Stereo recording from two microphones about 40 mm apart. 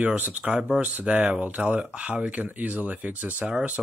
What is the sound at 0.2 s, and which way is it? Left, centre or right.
Speech, right.